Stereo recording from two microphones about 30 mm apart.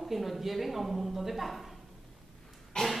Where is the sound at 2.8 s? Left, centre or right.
Left.